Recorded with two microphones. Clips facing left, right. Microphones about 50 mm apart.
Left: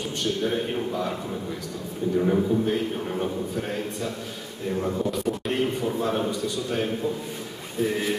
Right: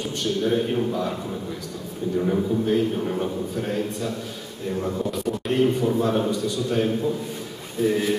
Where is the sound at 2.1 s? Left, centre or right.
Centre.